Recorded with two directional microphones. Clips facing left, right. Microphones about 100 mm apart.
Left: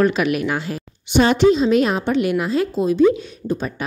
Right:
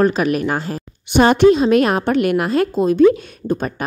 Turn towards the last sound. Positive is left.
turn(degrees=-50)  # may be behind; listen again after turning